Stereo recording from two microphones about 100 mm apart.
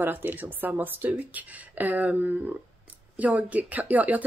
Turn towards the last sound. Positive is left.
turn(degrees=-15)  # may be behind; listen again after turning